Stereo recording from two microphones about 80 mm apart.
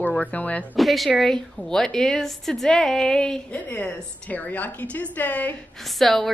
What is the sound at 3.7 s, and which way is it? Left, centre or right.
A woman's voice, left.